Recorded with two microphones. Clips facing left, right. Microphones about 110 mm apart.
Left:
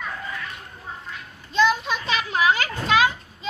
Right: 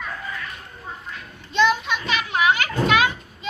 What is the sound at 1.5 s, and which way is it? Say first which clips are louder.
Children playing: right 1 dB; 35° left (ahead or behind).